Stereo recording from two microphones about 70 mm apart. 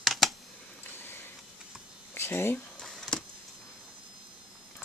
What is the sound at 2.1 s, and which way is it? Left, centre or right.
Speech, left.